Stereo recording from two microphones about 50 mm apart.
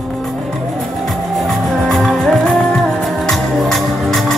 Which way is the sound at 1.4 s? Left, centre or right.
Centre.